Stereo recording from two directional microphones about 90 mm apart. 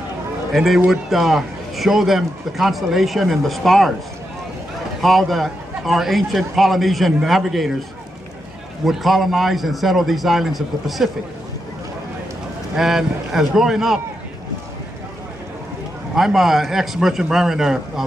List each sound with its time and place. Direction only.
0.5 s a man's voice: centre (ahead or behind)
5.0 s a man's voice: centre (ahead or behind)
8.8 s a man's voice: centre (ahead or behind)
12.7 s a man's voice: 5° right (ahead or behind)
16.2 s a man's voice: 5° right (ahead or behind)